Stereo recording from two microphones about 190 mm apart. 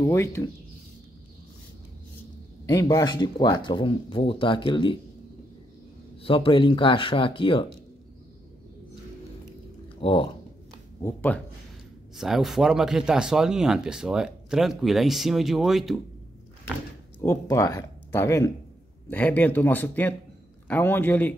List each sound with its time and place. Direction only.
0.0 s speech: 15° left (ahead or behind)
2.6 s speech: 20° left (ahead or behind)
6.2 s speech: 30° left (ahead or behind)
9.9 s speech: 25° left (ahead or behind)
11.0 s speech: 15° left (ahead or behind)
12.2 s speech: centre (ahead or behind)
17.2 s speech: 15° left (ahead or behind)